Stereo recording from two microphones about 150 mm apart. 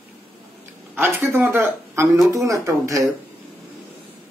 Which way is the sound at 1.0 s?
15° right (ahead or behind).